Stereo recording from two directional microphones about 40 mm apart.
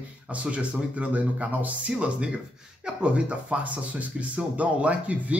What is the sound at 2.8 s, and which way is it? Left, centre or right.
A man's voice, right.